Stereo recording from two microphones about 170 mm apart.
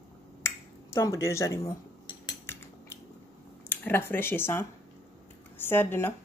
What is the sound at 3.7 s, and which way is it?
Speech, 10° left (ahead or behind).